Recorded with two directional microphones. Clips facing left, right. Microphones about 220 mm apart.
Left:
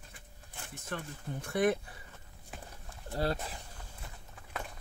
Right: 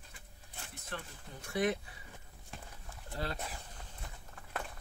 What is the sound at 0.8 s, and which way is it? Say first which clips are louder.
Speech: left 6 dB; 50° left (ahead or behind).